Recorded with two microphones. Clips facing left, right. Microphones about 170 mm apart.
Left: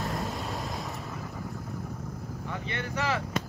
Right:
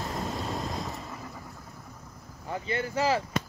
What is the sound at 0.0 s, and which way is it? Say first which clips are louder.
Vehicle: even; centre (ahead or behind).